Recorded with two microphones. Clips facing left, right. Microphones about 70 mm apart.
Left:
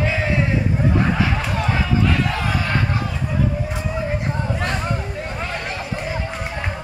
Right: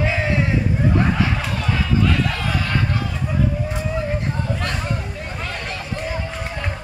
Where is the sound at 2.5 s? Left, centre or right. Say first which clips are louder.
Left 1 dB; centre.